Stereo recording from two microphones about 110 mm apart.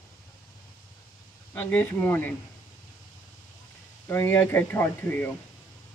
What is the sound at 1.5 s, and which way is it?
Speech, 15° left (ahead or behind).